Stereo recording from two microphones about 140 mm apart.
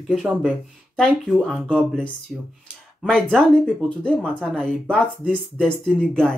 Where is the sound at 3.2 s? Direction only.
5° left (ahead or behind).